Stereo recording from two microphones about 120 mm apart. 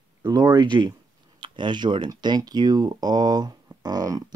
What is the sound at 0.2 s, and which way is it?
Speech, 35° right (ahead or behind).